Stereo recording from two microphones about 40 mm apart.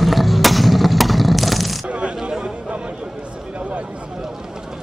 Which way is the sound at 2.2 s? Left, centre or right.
Centre.